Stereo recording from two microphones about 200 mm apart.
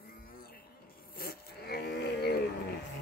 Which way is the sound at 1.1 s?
50° left (ahead or behind).